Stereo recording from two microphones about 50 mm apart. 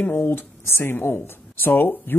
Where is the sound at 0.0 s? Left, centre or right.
Left.